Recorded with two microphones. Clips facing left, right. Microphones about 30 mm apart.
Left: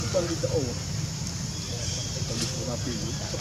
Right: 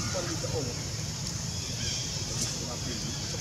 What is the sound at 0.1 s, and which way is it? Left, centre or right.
Speech, centre.